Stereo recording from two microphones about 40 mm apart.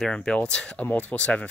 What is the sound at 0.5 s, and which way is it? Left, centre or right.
Speech, left.